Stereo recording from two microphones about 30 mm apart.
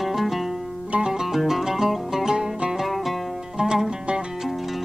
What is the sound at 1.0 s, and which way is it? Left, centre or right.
Music, right.